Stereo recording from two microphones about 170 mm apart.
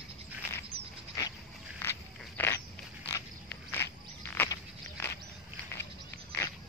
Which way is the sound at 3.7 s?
15° left (ahead or behind).